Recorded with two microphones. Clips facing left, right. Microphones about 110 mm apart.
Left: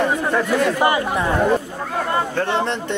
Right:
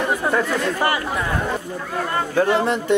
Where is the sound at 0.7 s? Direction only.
20° left (ahead or behind).